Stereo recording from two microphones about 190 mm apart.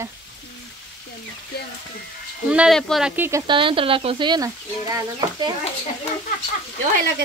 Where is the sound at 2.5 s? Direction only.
Centre (ahead or behind).